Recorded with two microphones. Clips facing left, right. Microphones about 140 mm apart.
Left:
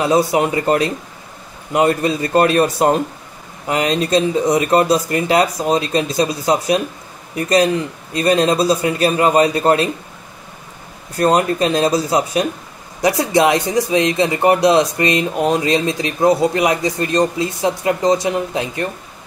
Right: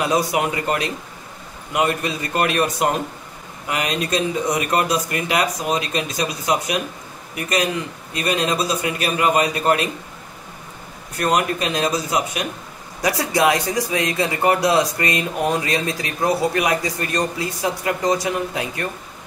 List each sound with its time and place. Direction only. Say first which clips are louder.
0.0 s speech: left 5 dB; 30° left (ahead or behind)
11.1 s speech: left 5 dB; 30° left (ahead or behind)